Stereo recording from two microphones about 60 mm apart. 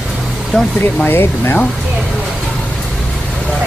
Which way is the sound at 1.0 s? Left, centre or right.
Left.